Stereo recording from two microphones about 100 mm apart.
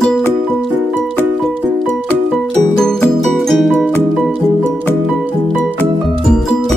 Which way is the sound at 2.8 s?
5° left (ahead or behind).